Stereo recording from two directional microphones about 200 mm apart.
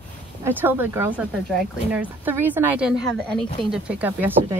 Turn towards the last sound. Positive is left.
turn(degrees=-10)  # may be behind; listen again after turning